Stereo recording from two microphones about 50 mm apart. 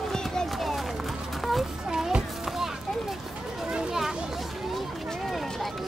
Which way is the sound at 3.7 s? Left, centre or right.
Centre.